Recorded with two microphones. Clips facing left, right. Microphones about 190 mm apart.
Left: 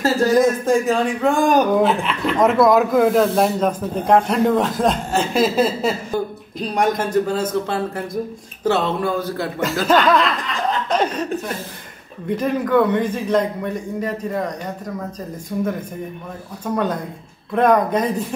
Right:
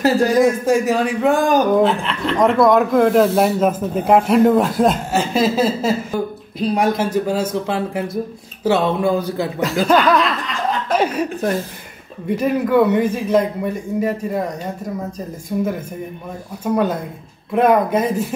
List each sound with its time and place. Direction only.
0.4 s a man's voice: 5° right (ahead or behind)
9.8 s a man's voice: centre (ahead or behind)
12.4 s a man's voice: 10° right (ahead or behind)
15.5 s a man's voice: 15° right (ahead or behind)